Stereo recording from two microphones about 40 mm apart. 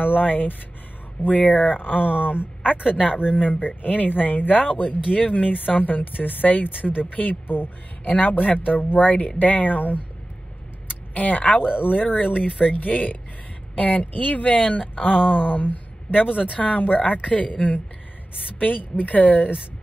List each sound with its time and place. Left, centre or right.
0.0 s speech: left
8.1 s speech: left